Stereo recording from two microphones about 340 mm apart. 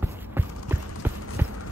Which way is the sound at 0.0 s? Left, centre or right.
Centre.